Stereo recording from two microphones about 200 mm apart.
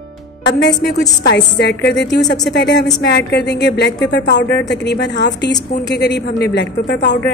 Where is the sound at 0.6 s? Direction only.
55° left (ahead or behind).